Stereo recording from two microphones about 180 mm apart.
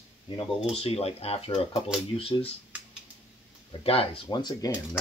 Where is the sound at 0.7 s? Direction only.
35° left (ahead or behind).